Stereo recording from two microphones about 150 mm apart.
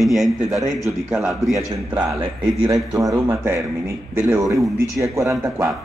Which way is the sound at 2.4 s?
25° right (ahead or behind).